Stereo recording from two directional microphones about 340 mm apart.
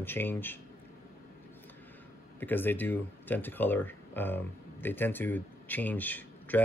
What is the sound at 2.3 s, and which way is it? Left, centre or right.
Speech, centre.